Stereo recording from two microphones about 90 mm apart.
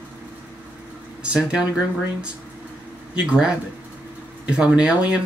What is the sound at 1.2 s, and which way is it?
Speech, 10° right (ahead or behind).